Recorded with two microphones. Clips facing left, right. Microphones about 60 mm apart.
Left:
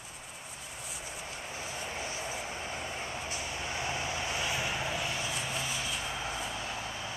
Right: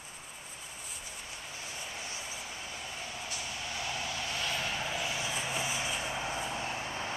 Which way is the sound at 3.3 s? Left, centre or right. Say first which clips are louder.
Left 3 dB; left.